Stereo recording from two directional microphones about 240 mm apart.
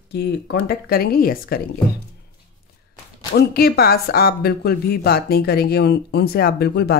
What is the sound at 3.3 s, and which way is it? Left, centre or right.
A woman's voice, left.